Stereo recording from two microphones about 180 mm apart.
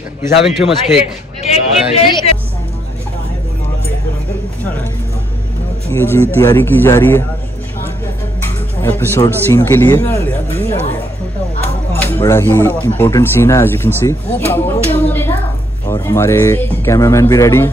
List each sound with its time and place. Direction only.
0.5 s a man's voice: centre (ahead or behind)
2.0 s music: 25° left (ahead or behind)
5.9 s speech: 10° left (ahead or behind)
8.5 s speech: 10° left (ahead or behind)
11.9 s speech: 10° left (ahead or behind)